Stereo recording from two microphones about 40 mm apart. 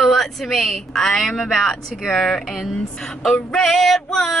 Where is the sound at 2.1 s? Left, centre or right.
Centre.